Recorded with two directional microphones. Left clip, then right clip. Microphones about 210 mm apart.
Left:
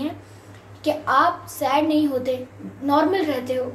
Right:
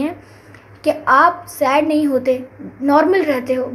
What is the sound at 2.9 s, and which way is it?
Speech, 40° right (ahead or behind).